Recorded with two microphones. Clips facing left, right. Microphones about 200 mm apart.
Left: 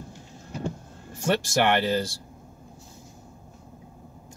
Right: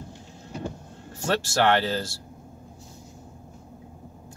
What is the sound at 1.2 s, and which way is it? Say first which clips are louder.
Speech: even; 15° left (ahead or behind).